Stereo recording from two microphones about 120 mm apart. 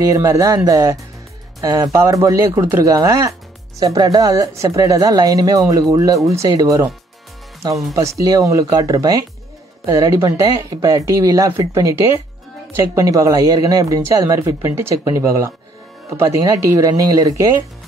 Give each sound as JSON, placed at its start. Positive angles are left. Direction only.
{"t": 0.1, "sound": "speech", "side_deg": -25}
{"t": 7.9, "sound": "speech", "side_deg": -25}